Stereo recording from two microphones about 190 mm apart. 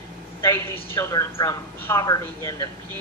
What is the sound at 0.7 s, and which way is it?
Speech, 15° left (ahead or behind).